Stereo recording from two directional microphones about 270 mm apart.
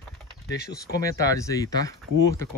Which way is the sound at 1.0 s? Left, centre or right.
Centre.